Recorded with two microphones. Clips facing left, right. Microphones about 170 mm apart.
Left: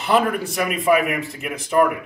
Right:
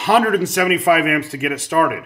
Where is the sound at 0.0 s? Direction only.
90° right.